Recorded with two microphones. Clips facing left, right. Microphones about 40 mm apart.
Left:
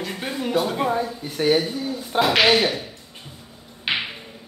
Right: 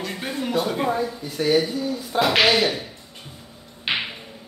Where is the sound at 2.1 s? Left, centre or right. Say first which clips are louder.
Left 1 dB; centre.